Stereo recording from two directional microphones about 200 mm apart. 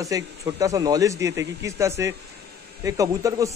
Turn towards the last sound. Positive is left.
turn(degrees=-15)  # may be behind; listen again after turning